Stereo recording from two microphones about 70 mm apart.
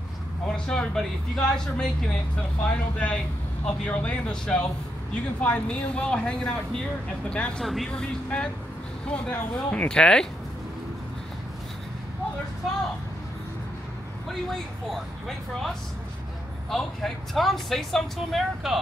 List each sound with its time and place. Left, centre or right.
0.5 s speech: centre
7.6 s speech: centre
7.9 s speech: centre
14.5 s speech: centre
16.7 s speech: centre